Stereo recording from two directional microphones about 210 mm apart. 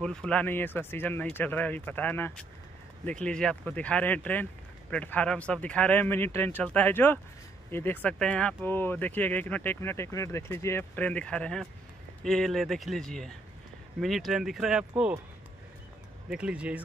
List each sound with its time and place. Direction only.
0.0 s speech: 5° left (ahead or behind)
16.3 s speech: 5° right (ahead or behind)